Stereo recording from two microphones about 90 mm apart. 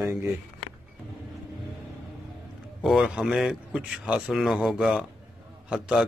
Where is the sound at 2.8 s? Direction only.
Centre (ahead or behind).